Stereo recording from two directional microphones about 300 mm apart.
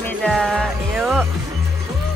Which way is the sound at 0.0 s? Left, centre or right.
Centre.